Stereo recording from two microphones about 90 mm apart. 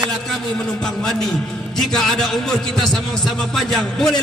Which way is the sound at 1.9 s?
5° left (ahead or behind).